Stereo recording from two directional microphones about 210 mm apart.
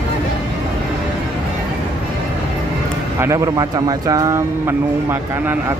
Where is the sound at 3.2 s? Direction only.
15° right (ahead or behind).